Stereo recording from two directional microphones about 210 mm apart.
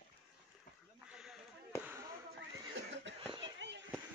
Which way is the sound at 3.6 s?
60° right (ahead or behind).